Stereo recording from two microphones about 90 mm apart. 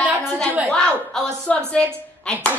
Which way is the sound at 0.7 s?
5° left (ahead or behind).